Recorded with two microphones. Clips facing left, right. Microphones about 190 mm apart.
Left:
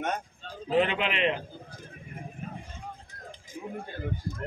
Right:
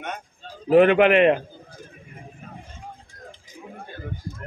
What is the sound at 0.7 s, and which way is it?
Speech, 60° right (ahead or behind).